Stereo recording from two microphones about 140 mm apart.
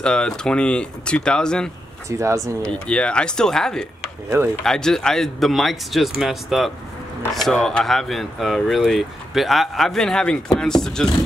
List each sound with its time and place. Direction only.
0.0 s speech: 5° left (ahead or behind)
2.0 s speech: 20° right (ahead or behind)
2.6 s speech: 5° left (ahead or behind)